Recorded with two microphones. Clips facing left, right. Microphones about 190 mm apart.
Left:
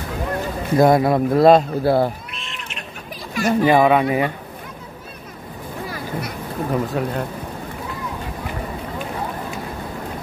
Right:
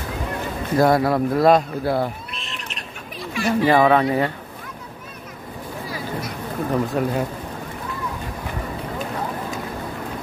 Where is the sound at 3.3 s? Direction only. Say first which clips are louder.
Left 2 dB; 45° left (ahead or behind).